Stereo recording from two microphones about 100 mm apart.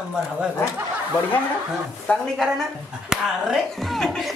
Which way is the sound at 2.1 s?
15° left (ahead or behind).